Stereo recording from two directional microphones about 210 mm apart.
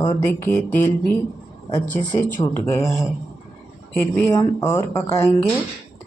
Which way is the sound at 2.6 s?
15° left (ahead or behind).